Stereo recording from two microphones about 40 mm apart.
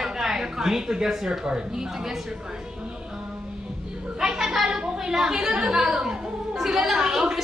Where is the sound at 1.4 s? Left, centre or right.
Centre.